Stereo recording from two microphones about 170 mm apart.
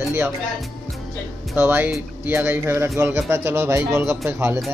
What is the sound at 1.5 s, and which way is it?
Speech, 10° right (ahead or behind).